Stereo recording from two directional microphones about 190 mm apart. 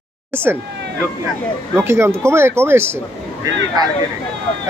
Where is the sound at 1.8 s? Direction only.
15° right (ahead or behind).